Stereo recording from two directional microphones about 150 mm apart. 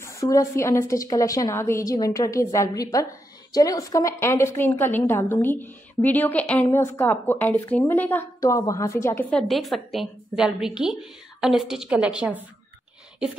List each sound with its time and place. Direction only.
0.0 s a woman's voice: 20° left (ahead or behind)
9.5 s a woman's voice: centre (ahead or behind)